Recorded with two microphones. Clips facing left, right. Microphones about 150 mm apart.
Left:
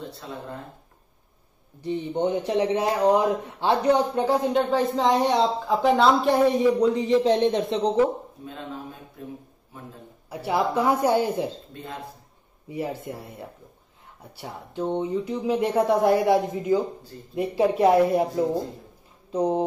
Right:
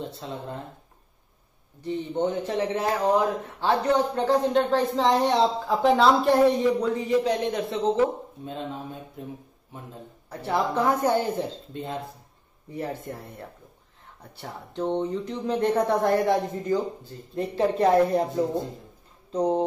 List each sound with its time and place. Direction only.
0.2 s speech: 25° right (ahead or behind)
1.8 s speech: 15° left (ahead or behind)
6.8 s a man's voice: 20° left (ahead or behind)
9.2 s speech: 25° right (ahead or behind)
10.3 s speech: 10° left (ahead or behind)
11.7 s speech: 25° right (ahead or behind)
12.6 s speech: 10° left (ahead or behind)